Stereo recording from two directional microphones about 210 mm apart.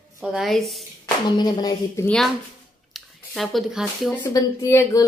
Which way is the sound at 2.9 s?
Centre (ahead or behind).